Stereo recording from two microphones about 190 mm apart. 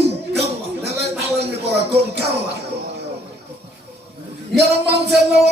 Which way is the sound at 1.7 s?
60° right (ahead or behind).